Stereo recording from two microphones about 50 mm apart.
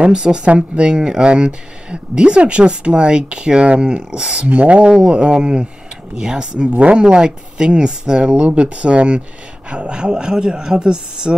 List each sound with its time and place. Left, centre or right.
0.0 s speech: centre
6.7 s speech: right